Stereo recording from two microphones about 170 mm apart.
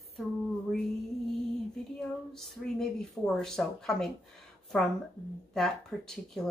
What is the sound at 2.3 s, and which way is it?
Speech, centre (ahead or behind).